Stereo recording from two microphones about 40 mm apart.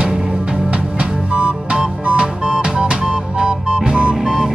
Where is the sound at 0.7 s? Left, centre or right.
Right.